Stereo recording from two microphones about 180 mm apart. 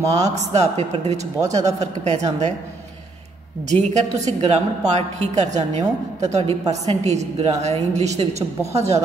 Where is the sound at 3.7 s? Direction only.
40° right (ahead or behind).